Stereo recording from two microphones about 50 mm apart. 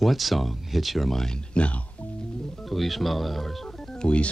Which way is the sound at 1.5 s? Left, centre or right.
Left.